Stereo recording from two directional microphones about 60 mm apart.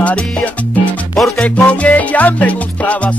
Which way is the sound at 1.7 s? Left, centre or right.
Left.